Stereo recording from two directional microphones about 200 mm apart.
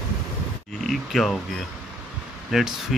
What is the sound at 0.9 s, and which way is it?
Speech, centre (ahead or behind).